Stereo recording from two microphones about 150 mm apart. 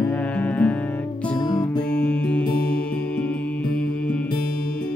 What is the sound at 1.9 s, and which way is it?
Music, 10° left (ahead or behind).